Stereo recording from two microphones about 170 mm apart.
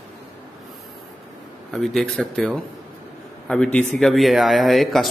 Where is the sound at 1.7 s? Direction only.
Centre (ahead or behind).